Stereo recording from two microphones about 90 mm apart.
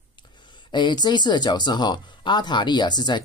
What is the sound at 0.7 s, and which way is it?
Speech, 55° left (ahead or behind).